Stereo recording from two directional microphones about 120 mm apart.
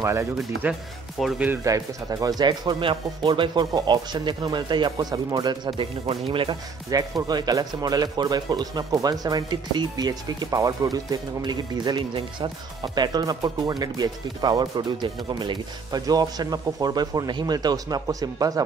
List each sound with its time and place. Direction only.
0.0 s speech: 25° right (ahead or behind)
1.2 s speech: centre (ahead or behind)
1.6 s speech: 30° right (ahead or behind); by 6.5 s 50° right (ahead or behind)
6.9 s speech: 30° right (ahead or behind)